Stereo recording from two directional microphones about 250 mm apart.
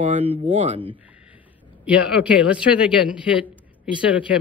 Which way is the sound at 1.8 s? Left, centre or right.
Centre.